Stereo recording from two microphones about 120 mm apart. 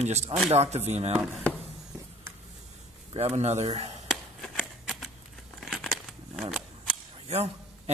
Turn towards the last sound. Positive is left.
turn(degrees=-60)  # may be behind; listen again after turning